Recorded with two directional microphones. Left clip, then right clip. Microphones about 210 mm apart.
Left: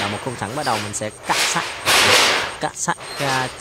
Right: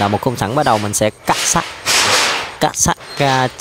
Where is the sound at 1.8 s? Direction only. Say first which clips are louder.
Left 1 dB; centre (ahead or behind).